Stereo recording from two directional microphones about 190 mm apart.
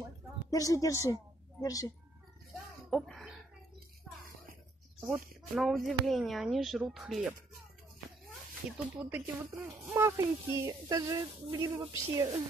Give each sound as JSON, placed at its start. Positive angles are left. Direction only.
{"t": 0.5, "sound": "speech", "side_deg": 20}
{"t": 2.9, "sound": "a sound", "side_deg": 0}
{"t": 5.0, "sound": "speech", "side_deg": 0}
{"t": 8.6, "sound": "speech", "side_deg": -10}